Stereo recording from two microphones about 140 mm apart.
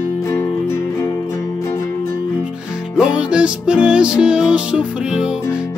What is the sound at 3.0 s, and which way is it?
Music, 5° right (ahead or behind).